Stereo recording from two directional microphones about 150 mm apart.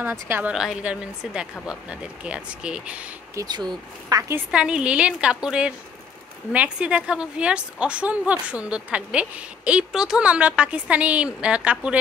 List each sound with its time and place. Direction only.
0.0 s a woman's voice: 15° right (ahead or behind)
3.3 s speech: 30° right (ahead or behind)
4.5 s a woman's voice: 5° right (ahead or behind)